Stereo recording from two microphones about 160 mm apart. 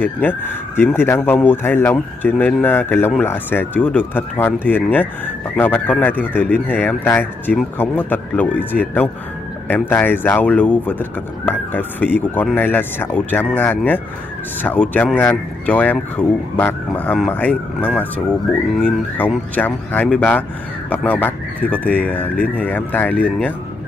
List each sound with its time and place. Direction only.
0.0 s speech: 10° left (ahead or behind)